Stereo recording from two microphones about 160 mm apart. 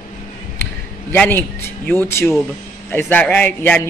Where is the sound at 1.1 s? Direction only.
10° left (ahead or behind).